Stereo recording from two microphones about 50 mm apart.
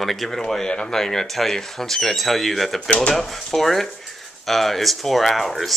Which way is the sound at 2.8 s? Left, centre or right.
Centre.